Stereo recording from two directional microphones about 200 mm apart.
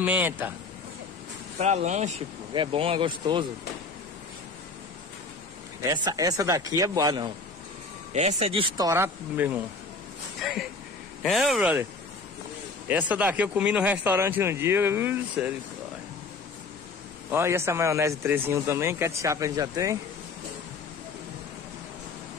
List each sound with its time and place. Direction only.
0.0 s speech: 10° right (ahead or behind)
1.6 s speech: 35° right (ahead or behind)
5.8 s speech: 15° right (ahead or behind)
8.1 s speech: 35° right (ahead or behind); by 9.6 s 10° right (ahead or behind)
10.4 s a sound: centre (ahead or behind)
11.2 s speech: centre (ahead or behind)
12.8 s speech: 10° right (ahead or behind)
17.3 s speech: 15° right (ahead or behind)